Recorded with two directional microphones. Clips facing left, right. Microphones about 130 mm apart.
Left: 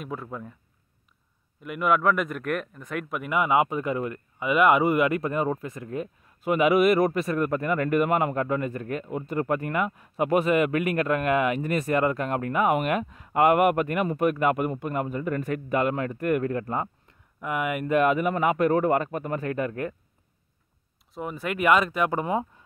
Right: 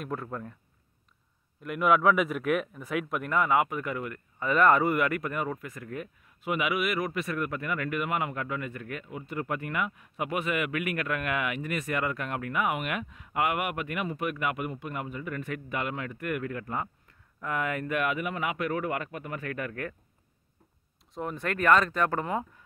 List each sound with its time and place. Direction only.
0.0 s a man's voice: centre (ahead or behind)
1.6 s a man's voice: centre (ahead or behind)
3.3 s speech: 20° left (ahead or behind)
4.4 s speech: 10° left (ahead or behind)
6.4 s speech: 40° left (ahead or behind)
17.4 s speech: 15° left (ahead or behind)
17.8 s speech: 30° left (ahead or behind)
21.1 s speech: 5° left (ahead or behind)